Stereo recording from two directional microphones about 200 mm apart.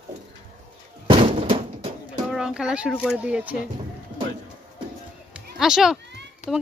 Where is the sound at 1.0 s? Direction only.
25° right (ahead or behind).